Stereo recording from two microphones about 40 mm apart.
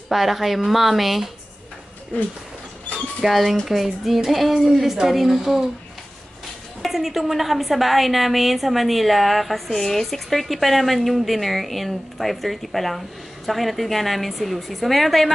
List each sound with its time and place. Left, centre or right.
0.1 s speech: centre
2.1 s a sound: left
3.2 s a woman's voice: centre
6.8 s speech: centre